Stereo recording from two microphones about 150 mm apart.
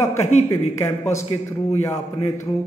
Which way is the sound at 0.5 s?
15° left (ahead or behind).